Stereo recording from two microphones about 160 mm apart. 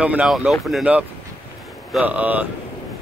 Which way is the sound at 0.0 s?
5° right (ahead or behind).